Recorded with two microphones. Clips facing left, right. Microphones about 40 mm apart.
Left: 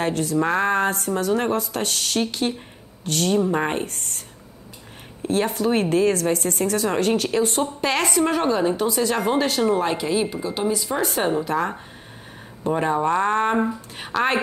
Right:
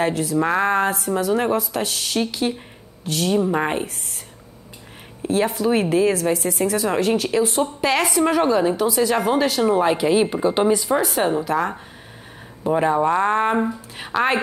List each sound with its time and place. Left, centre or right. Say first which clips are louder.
0.0 s a woman's voice: right 2 dB; centre
5.2 s a woman's voice: right 2 dB; centre; by 10.6 s right
10.7 s a woman's voice: right 4 dB; centre